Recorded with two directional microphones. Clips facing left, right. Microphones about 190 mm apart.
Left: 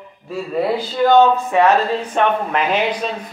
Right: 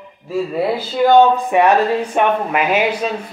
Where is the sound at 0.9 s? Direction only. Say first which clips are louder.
Right 2 dB; 10° right (ahead or behind).